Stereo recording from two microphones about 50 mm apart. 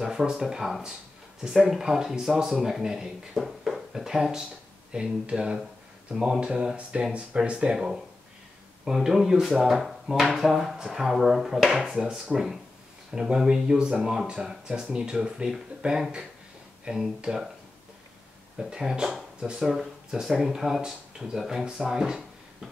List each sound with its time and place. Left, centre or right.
0.0 s speech: centre
18.6 s speech: centre